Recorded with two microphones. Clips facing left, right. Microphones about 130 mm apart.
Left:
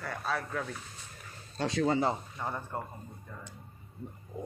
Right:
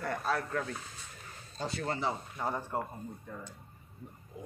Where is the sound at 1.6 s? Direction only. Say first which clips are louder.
Left 5 dB; 70° left (ahead or behind).